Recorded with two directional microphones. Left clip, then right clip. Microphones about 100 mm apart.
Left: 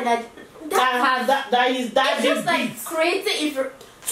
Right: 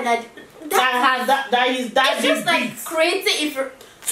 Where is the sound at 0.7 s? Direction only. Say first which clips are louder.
Right 2 dB; 5° right (ahead or behind).